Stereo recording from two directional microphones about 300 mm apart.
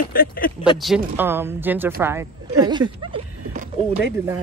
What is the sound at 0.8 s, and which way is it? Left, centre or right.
A woman's voice, centre.